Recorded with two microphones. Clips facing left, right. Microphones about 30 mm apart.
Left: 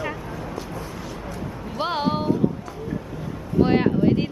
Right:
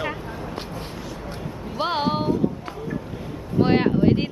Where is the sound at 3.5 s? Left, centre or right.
Right.